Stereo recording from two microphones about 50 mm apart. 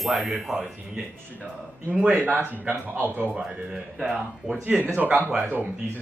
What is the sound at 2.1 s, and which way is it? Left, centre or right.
Speech, right.